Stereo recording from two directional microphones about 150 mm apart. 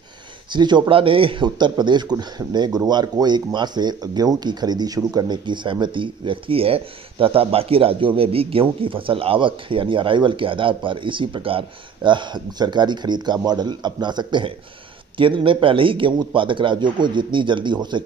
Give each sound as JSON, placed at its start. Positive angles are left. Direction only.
{"t": 0.5, "sound": "speech", "side_deg": -30}